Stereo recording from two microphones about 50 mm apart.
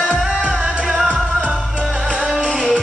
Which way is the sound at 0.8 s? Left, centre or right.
Centre.